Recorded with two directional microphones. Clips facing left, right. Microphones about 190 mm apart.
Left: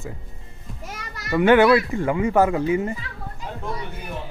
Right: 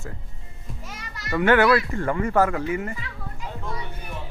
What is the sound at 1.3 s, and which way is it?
Speech, 15° left (ahead or behind).